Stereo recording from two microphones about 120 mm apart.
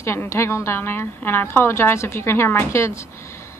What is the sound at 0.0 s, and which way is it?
A woman's voice, 20° left (ahead or behind).